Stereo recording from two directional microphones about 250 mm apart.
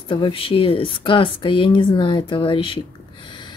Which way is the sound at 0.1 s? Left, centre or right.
Centre.